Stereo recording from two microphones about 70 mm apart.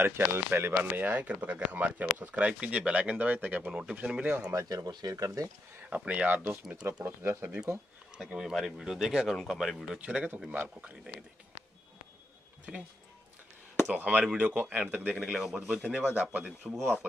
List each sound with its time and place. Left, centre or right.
0.3 s speech: right; by 4.5 s centre
4.6 s speech: right
5.1 s speech: right
5.9 s speech: right
8.3 s speech: centre
9.9 s speech: centre
13.9 s speech: centre
15.1 s speech: centre
16.2 s speech: right
16.4 s speech: centre